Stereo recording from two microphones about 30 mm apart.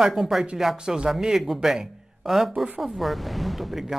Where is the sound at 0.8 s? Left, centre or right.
Right.